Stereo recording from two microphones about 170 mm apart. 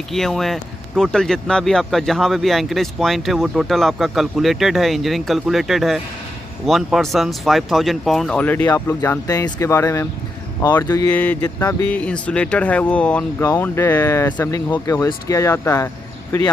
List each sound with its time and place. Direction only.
0.1 s speech: centre (ahead or behind); by 11.1 s 20° left (ahead or behind)
11.1 s speech: 10° left (ahead or behind)